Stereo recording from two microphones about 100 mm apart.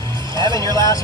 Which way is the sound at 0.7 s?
45° right (ahead or behind).